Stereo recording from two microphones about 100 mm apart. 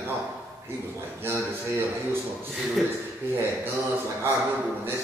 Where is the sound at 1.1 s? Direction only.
25° right (ahead or behind).